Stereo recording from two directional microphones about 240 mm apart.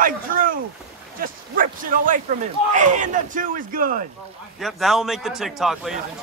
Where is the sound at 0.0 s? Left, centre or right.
Right.